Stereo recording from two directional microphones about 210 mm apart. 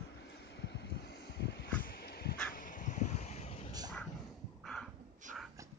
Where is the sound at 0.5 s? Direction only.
55° left (ahead or behind).